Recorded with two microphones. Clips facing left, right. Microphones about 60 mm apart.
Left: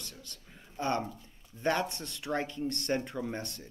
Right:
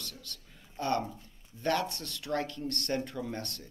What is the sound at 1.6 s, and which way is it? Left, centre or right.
Speech, centre.